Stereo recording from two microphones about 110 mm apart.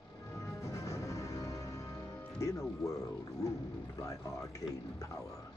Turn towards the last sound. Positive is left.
turn(degrees=30)  # may be behind; listen again after turning